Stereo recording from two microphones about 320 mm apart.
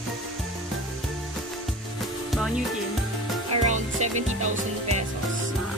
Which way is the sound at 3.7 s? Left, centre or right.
Right.